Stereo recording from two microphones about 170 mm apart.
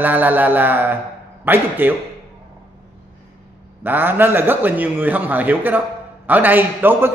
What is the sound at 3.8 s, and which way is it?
A man's voice, 10° right (ahead or behind).